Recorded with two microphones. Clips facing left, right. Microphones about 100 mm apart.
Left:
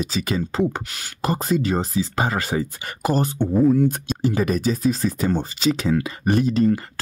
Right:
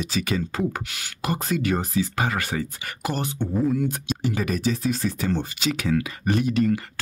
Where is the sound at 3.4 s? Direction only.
30° left (ahead or behind).